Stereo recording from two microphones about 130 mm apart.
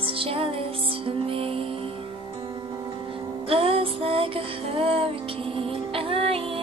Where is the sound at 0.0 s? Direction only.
45° right (ahead or behind).